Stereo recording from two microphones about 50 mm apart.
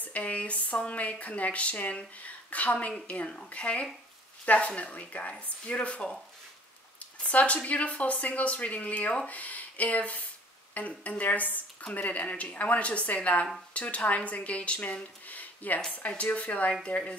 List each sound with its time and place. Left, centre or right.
0.0 s speech: left
7.2 s speech: left
9.3 s a sound: left
10.8 s a woman's voice: left